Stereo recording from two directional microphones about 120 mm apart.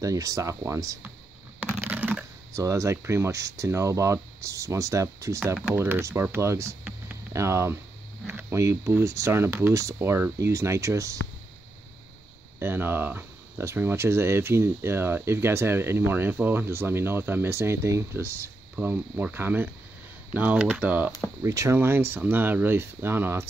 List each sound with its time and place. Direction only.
0.0 s speech: 30° right (ahead or behind)
1.9 s typing: 15° right (ahead or behind)
2.5 s speech: 25° right (ahead or behind)
12.5 s speech: 20° right (ahead or behind)
21.4 s speech: 25° right (ahead or behind)